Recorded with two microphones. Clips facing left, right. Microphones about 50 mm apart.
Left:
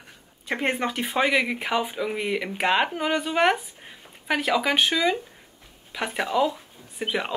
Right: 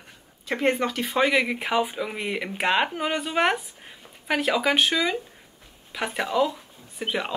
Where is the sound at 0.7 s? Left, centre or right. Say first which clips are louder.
Right 3 dB; centre.